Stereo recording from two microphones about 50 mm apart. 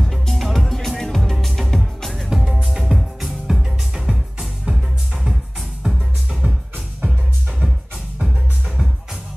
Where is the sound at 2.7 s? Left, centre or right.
Centre.